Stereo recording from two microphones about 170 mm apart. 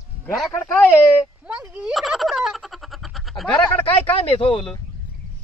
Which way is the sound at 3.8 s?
35° left (ahead or behind).